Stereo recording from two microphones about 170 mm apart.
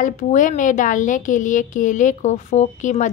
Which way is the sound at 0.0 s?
45° left (ahead or behind).